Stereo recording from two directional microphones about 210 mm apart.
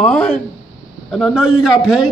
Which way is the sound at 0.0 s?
5° left (ahead or behind).